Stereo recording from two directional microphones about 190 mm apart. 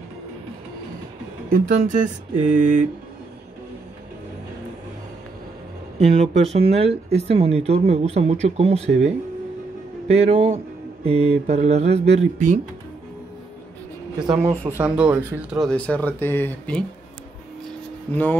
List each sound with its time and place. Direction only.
1.5 s speech: 45° right (ahead or behind)
5.9 s speech: 35° right (ahead or behind)
14.5 s speech: 10° right (ahead or behind)
15.6 s speech: 5° left (ahead or behind)
18.1 s speech: 10° left (ahead or behind)